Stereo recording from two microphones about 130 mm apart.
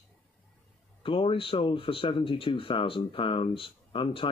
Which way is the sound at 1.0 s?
40° left (ahead or behind).